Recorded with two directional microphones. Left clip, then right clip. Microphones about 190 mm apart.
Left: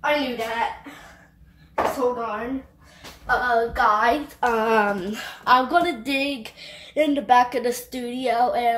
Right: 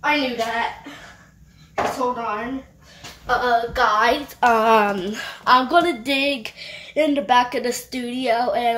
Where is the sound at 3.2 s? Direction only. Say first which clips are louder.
Right 1 dB; 55° right (ahead or behind).